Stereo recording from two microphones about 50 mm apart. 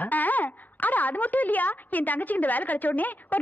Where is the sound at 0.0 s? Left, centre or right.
Left.